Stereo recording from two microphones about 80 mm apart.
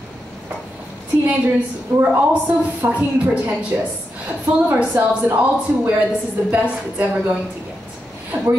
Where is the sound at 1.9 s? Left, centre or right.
Centre.